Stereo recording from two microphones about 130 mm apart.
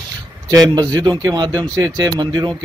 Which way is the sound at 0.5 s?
30° right (ahead or behind).